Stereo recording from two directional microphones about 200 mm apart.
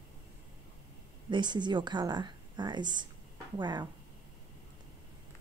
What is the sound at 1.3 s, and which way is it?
Speech, 20° right (ahead or behind).